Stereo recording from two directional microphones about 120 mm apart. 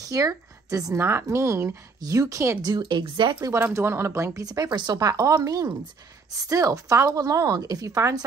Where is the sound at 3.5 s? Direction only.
20° right (ahead or behind).